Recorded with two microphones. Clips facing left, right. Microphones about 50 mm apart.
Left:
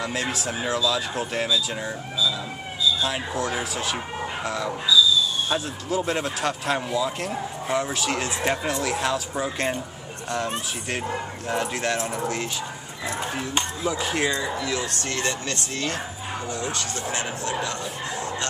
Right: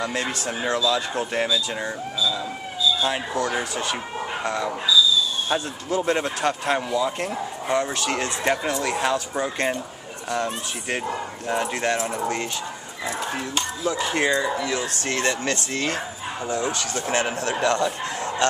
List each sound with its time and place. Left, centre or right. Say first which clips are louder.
0.0 s speech: right 1 dB; centre
3.3 s speech: right 2 dB; centre
5.5 s speech: right 3 dB; centre
5.9 s speech: right 3 dB; centre
13.9 s speech: right 4 dB; centre
15.0 s speech: right 7 dB; right
17.1 s speech: right 6 dB; right
17.6 s speech: right 8 dB; right